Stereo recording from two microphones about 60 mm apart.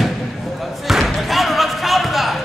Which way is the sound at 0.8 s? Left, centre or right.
Centre.